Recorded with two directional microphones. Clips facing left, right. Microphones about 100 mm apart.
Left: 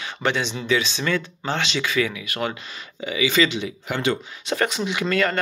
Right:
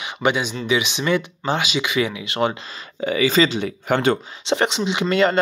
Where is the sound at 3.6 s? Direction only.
50° right (ahead or behind).